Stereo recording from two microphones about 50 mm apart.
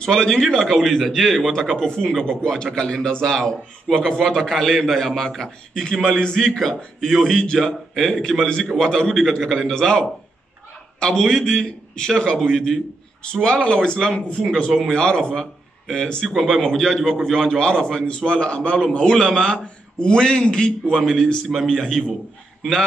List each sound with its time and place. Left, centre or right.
0.0 s a man's voice: centre
0.8 s a man's voice: centre
21.0 s a man's voice: centre